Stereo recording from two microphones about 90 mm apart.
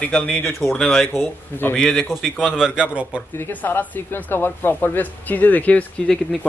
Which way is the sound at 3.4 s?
25° left (ahead or behind).